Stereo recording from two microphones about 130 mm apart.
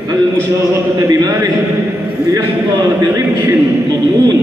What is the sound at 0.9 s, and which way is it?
Speech, 25° right (ahead or behind).